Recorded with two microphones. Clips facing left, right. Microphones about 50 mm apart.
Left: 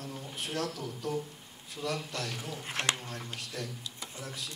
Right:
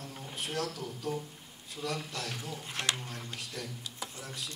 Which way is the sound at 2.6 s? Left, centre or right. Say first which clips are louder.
Left 3 dB; left.